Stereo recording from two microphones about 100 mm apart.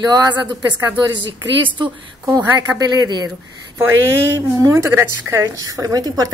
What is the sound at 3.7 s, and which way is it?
A woman's voice, 25° right (ahead or behind).